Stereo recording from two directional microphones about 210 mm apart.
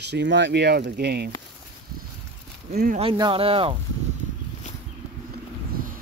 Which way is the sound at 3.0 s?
25° right (ahead or behind).